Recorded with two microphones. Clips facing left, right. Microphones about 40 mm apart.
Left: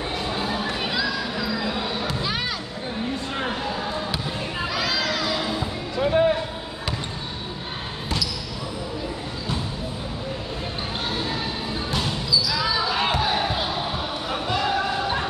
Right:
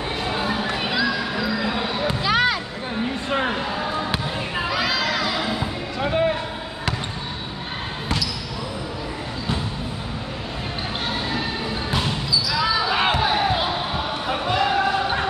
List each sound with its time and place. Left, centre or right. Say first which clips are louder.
0.3 s a sound: right 4 dB; right
0.9 s basketball bounce: right 3 dB; centre
2.2 s music: right 8 dB; right
3.3 s music: right 5 dB; right
4.6 s music: right 3 dB; centre
11.9 s basketball bounce: even; centre
13.1 s a sound: right 3 dB; centre